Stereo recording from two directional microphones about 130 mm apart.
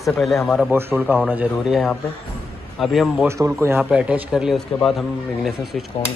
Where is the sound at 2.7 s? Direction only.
Centre (ahead or behind).